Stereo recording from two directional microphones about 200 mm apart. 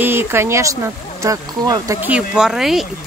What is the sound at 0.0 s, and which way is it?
Speech, 10° right (ahead or behind).